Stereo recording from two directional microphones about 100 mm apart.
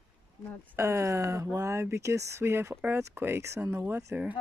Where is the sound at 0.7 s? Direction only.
30° right (ahead or behind).